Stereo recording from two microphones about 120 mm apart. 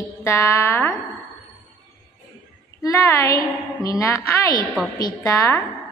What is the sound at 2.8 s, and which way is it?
A woman's voice, 25° left (ahead or behind).